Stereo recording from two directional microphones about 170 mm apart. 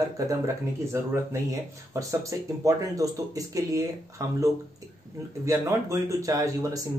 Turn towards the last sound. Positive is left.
turn(degrees=-20)  # may be behind; listen again after turning